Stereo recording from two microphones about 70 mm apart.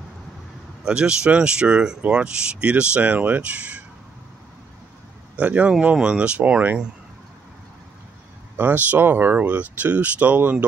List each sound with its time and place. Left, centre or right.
0.8 s speech: centre
5.3 s speech: centre
8.5 s speech: right